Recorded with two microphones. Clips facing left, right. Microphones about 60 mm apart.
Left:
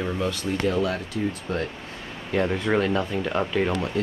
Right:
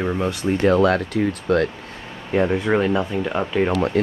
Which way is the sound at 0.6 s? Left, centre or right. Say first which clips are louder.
Right 9 dB; right.